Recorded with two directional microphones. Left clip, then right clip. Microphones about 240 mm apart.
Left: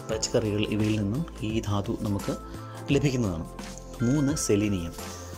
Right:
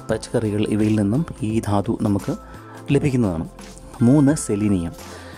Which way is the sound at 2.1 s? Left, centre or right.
Centre.